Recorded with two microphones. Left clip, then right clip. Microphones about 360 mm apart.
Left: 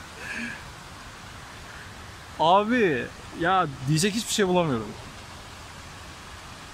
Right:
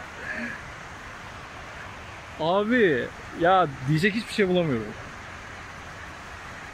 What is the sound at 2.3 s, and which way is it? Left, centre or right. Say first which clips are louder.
Speech: left 3 dB; centre.